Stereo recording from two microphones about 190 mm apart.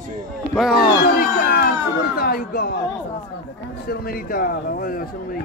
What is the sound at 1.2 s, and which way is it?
A man's voice, 50° left (ahead or behind).